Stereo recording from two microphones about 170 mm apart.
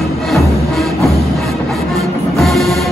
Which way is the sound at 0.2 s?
Centre (ahead or behind).